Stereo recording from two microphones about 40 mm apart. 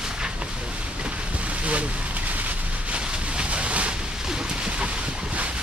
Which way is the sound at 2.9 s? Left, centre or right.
Right.